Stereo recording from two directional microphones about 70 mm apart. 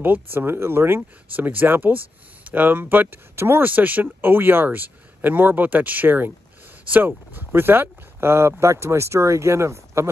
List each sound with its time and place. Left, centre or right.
0.0 s speech: right